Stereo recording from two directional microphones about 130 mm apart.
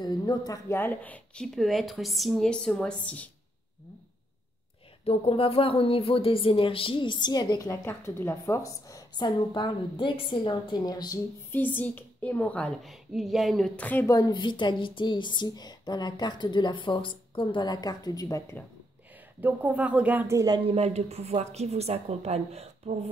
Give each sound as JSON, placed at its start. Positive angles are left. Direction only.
{"t": 0.0, "sound": "speech", "side_deg": 35}
{"t": 5.0, "sound": "speech", "side_deg": 45}
{"t": 11.5, "sound": "speech", "side_deg": 15}
{"t": 13.7, "sound": "speech", "side_deg": 10}
{"t": 14.0, "sound": "a woman's voice", "side_deg": 25}
{"t": 14.3, "sound": "speech", "side_deg": 35}
{"t": 19.4, "sound": "speech", "side_deg": -10}
{"t": 20.3, "sound": "speech", "side_deg": -30}
{"t": 20.6, "sound": "a woman's voice", "side_deg": -50}